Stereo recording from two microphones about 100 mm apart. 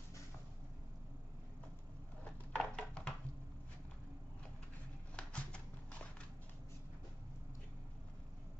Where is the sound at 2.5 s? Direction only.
10° left (ahead or behind).